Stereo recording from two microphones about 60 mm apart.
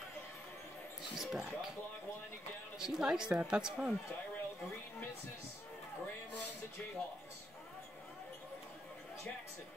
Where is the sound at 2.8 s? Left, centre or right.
Centre.